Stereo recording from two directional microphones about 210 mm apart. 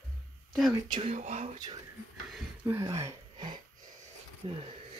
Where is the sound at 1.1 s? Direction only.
35° right (ahead or behind).